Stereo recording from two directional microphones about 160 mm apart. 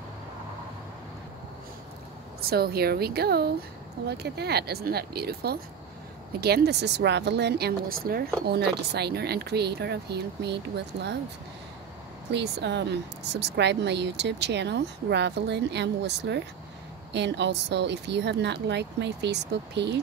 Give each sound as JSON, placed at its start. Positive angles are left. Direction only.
{"t": 2.4, "sound": "speech", "side_deg": -75}
{"t": 4.1, "sound": "a woman's voice", "side_deg": -90}
{"t": 8.5, "sound": "a woman's voice", "side_deg": -90}
{"t": 12.3, "sound": "a woman's voice", "side_deg": -90}